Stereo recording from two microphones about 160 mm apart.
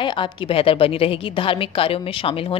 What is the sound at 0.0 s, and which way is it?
A woman's voice, 30° left (ahead or behind).